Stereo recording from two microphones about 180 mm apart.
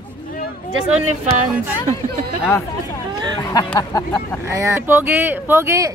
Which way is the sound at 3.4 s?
25° left (ahead or behind).